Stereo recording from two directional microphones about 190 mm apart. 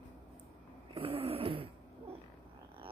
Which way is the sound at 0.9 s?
30° right (ahead or behind).